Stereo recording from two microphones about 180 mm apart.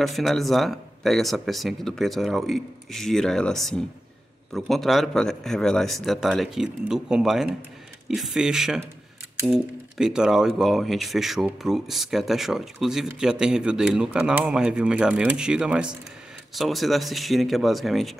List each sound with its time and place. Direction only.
0.0 s speech: centre (ahead or behind)